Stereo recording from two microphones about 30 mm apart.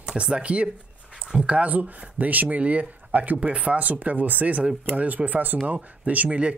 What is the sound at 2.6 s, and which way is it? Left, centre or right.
Speech, right.